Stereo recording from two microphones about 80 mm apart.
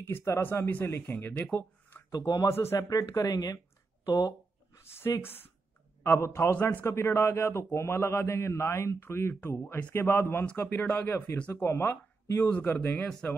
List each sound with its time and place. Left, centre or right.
0.0 s speech: left
2.0 s a man's voice: left
2.9 s speech: left
4.7 s a man's voice: left
10.4 s speech: centre
12.4 s speech: centre
12.9 s speech: centre